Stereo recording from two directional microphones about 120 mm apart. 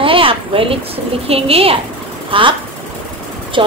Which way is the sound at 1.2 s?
55° right (ahead or behind).